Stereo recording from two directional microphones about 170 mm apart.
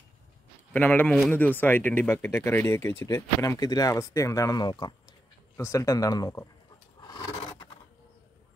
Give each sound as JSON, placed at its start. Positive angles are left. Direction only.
{"t": 0.7, "sound": "speech", "side_deg": 10}
{"t": 7.0, "sound": "scrape", "side_deg": 25}
{"t": 7.3, "sound": "scissors", "side_deg": 35}